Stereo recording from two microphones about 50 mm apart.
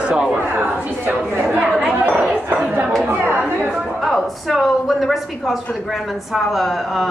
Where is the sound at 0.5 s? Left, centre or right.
Right.